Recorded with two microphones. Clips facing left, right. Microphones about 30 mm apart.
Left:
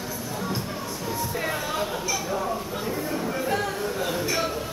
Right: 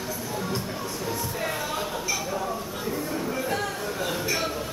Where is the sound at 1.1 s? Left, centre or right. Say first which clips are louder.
Left 3 dB; centre.